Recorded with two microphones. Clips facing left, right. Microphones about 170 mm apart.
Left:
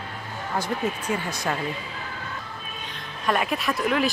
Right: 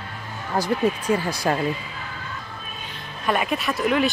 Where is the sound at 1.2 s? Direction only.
35° right (ahead or behind).